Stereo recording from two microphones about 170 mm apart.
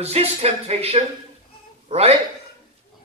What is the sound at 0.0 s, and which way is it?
A man's voice, 35° right (ahead or behind).